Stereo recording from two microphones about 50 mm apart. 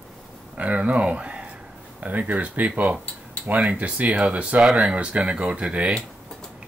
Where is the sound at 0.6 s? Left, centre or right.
Right.